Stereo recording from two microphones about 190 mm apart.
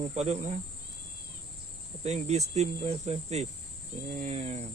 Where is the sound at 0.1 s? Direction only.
35° right (ahead or behind).